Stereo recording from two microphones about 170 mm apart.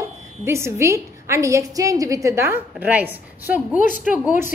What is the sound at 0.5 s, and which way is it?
A woman's voice, 15° right (ahead or behind).